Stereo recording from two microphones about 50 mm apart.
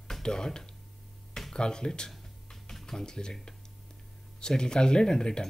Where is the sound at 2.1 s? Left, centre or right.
Centre.